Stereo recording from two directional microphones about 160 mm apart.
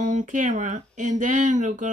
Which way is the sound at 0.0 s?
50° right (ahead or behind).